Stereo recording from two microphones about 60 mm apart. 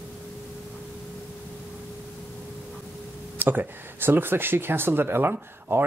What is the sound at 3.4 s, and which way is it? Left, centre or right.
Speech, right.